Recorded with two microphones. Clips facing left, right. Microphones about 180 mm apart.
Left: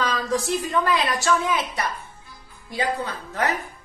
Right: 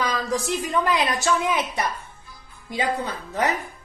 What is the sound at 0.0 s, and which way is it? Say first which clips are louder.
A woman's voice: left 1 dB; 15° right (ahead or behind).